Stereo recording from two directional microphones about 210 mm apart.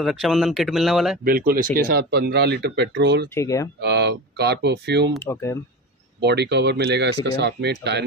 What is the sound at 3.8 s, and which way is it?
A man's voice, 55° right (ahead or behind).